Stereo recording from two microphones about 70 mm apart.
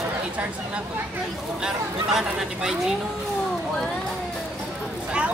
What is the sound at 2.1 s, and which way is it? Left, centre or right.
Speech, centre.